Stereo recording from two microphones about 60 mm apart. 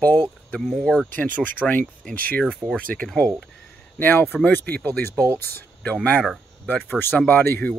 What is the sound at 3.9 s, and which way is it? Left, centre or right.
Speech, left.